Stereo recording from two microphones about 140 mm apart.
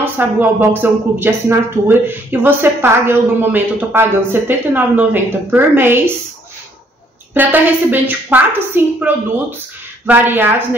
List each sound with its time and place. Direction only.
0.0 s speech: 15° right (ahead or behind)
7.3 s speech: 15° right (ahead or behind)